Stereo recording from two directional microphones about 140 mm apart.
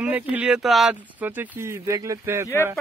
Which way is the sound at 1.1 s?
15° right (ahead or behind).